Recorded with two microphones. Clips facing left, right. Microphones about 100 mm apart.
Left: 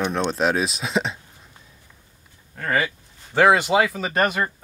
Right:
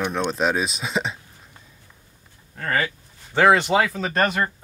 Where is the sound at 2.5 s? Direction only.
10° left (ahead or behind).